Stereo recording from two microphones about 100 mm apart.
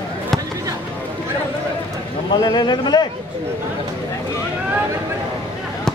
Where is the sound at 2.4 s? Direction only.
45° left (ahead or behind).